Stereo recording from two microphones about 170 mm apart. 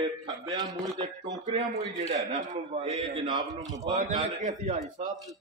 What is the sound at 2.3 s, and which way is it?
A man's voice, 45° right (ahead or behind).